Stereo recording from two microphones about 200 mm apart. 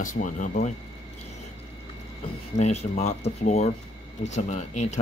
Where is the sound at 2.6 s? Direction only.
35° left (ahead or behind).